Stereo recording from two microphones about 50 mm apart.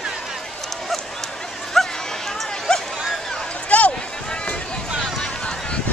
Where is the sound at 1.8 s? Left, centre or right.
Centre.